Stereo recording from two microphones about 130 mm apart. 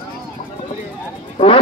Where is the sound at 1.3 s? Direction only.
45° left (ahead or behind).